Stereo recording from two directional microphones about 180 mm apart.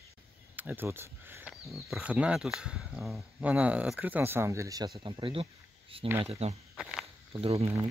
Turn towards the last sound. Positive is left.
turn(degrees=-35)  # may be behind; listen again after turning